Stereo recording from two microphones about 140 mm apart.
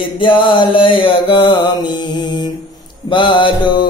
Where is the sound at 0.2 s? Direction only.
35° left (ahead or behind).